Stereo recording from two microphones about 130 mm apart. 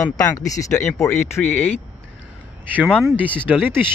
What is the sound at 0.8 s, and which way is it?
Speech, 5° left (ahead or behind).